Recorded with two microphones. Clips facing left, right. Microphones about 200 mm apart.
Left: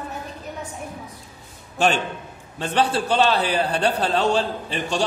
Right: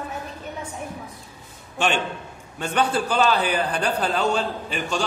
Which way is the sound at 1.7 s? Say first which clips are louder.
Left 3 dB; 40° left (ahead or behind).